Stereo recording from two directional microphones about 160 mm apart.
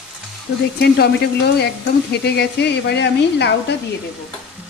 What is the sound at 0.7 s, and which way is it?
Speech, 90° left.